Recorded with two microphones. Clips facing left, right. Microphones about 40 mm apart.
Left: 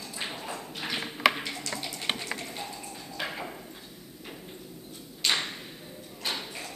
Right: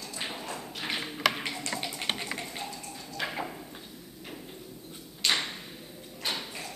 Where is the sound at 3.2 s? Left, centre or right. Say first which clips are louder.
Right 1 dB; centre.